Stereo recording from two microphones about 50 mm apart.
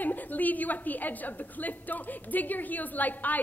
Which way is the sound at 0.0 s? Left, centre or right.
Left.